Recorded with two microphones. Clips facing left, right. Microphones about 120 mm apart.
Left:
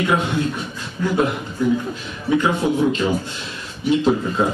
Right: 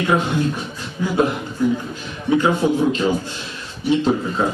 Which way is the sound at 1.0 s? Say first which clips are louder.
Left 1 dB; 5° right (ahead or behind).